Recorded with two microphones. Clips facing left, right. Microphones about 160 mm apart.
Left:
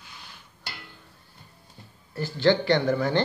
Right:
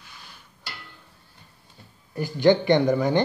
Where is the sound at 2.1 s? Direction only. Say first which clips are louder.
Right 3 dB; 15° right (ahead or behind).